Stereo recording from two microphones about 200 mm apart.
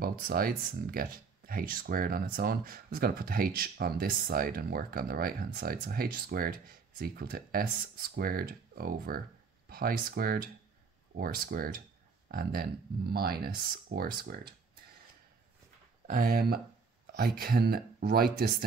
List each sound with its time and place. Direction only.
0.0 s speech: 50° right (ahead or behind)
16.1 s speech: 45° right (ahead or behind)